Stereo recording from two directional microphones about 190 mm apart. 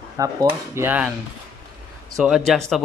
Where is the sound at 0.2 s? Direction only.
15° right (ahead or behind).